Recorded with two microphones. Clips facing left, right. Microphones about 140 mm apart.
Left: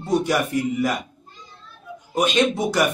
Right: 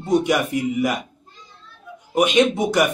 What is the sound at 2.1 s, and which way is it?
Speech, 15° right (ahead or behind).